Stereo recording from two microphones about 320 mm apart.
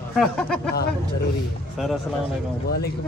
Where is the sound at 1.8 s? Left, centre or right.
Centre.